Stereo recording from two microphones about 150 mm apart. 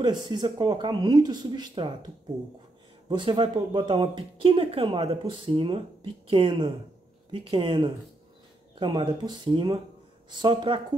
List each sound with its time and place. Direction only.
0.0 s speech: 30° right (ahead or behind)
3.1 s speech: 35° right (ahead or behind)